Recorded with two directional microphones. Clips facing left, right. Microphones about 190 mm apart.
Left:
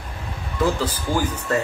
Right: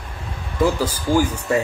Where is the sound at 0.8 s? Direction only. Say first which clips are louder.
Right 4 dB; 10° right (ahead or behind).